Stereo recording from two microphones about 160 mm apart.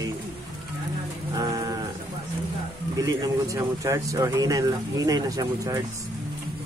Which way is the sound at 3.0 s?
20° right (ahead or behind).